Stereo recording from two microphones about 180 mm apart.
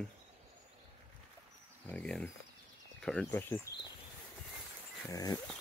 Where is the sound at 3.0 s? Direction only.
5° left (ahead or behind).